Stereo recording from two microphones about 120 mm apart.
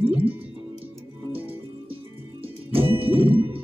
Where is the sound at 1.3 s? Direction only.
50° right (ahead or behind).